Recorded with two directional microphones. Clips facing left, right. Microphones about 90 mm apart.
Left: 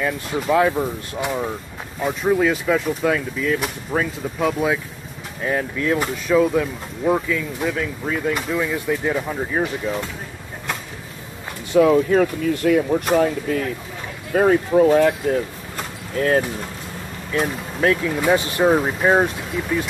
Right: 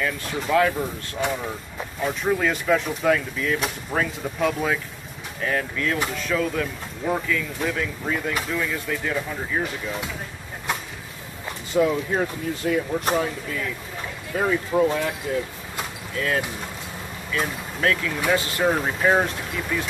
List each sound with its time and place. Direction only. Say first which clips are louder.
0.0 s speech: left 4 dB; 15° left (ahead or behind)
8.5 s speech: left 5 dB; 15° left (ahead or behind)
11.7 s speech: left 7 dB; 90° left; by 15.0 s 70° left (ahead or behind)
16.2 s speech: left 6 dB; 40° left (ahead or behind)
17.3 s speech: left 4 dB; 25° left (ahead or behind)
18.9 s speech: left 3 dB; 10° left (ahead or behind)